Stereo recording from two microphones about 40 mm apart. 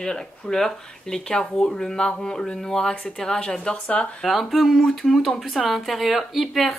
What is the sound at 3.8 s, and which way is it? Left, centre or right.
Speech, left.